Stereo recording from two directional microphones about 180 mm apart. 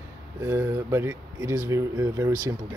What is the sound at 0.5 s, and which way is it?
Speech, 15° right (ahead or behind).